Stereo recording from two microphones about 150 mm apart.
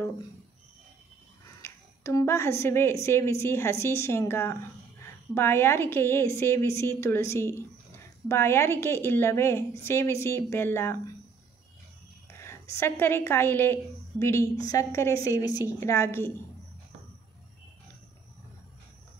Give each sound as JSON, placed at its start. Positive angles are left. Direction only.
{"t": 1.6, "sound": "a woman's voice", "side_deg": 20}
{"t": 12.4, "sound": "a woman's voice", "side_deg": 20}